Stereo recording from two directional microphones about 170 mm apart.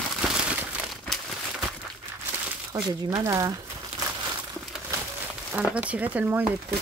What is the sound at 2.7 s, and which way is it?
Speech, 15° right (ahead or behind).